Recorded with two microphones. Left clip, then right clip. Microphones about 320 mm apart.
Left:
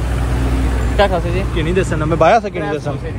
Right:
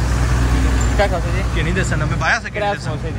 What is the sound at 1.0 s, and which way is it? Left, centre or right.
Speech, left.